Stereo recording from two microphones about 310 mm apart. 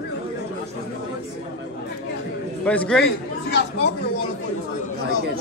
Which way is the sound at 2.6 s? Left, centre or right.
Centre.